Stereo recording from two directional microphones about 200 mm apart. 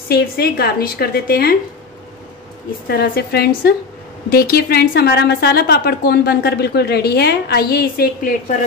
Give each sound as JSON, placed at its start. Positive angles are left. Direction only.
{"t": 0.1, "sound": "a woman's voice", "side_deg": 50}
{"t": 2.9, "sound": "a woman's voice", "side_deg": 50}